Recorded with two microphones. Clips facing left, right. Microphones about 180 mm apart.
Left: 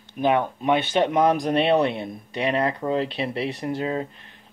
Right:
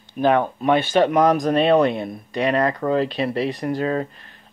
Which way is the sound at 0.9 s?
20° left (ahead or behind).